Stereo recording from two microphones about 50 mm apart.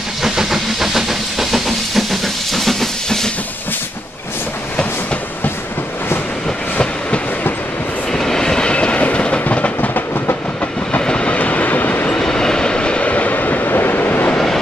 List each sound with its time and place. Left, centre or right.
0.2 s steam: centre
8.1 s train: centre; by 9.8 s left
10.9 s train: left
12.1 s vehicle: centre; by 14.3 s left